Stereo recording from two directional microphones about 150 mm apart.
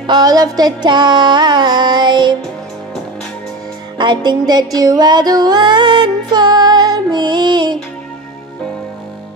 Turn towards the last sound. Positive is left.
turn(degrees=-30)  # may be behind; listen again after turning